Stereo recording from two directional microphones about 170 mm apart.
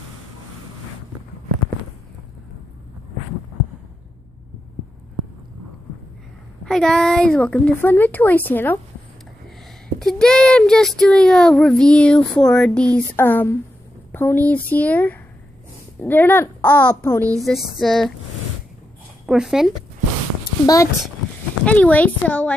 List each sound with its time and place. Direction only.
6.6 s a woman's voice: 5° left (ahead or behind)
9.9 s a woman's voice: 5° left (ahead or behind)
17.4 s speech: centre (ahead or behind)
19.2 s speech: 5° right (ahead or behind)
20.6 s speech: 20° left (ahead or behind)
21.6 s a woman's voice: 10° left (ahead or behind)